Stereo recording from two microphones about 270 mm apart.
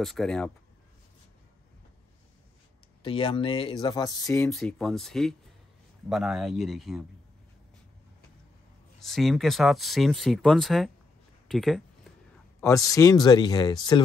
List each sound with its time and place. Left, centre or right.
0.0 s speech: centre
3.0 s speech: centre
4.5 s speech: centre
9.0 s speech: centre
12.5 s speech: centre